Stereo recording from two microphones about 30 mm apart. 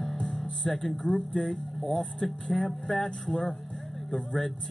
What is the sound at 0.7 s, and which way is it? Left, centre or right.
Speech, centre.